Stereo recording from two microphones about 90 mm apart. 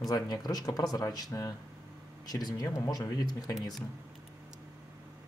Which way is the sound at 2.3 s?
50° left (ahead or behind).